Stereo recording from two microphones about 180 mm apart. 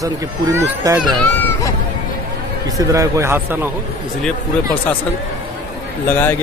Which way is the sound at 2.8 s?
15° right (ahead or behind).